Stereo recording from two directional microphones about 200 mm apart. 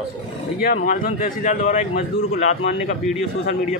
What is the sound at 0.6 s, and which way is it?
Speech, 40° left (ahead or behind).